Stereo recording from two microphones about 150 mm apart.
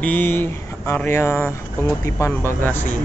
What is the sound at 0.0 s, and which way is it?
Speech, 10° left (ahead or behind).